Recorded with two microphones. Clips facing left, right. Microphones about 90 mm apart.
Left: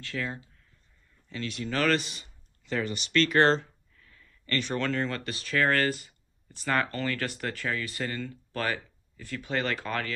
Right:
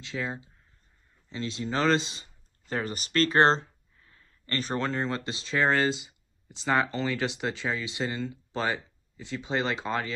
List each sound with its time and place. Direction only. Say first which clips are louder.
0.0 s speech: right 1 dB; 20° right (ahead or behind)